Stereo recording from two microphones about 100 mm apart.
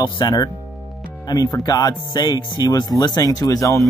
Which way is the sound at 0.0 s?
45° left (ahead or behind).